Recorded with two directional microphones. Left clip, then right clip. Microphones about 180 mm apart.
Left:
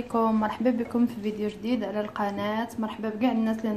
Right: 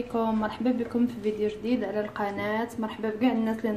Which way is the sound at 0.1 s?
25° left (ahead or behind).